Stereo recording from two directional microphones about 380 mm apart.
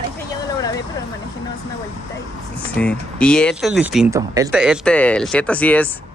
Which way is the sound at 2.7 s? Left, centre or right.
Centre.